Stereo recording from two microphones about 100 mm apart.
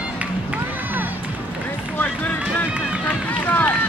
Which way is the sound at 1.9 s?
15° left (ahead or behind).